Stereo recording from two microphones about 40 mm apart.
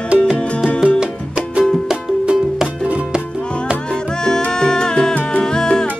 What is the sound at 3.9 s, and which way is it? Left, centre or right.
Music, centre.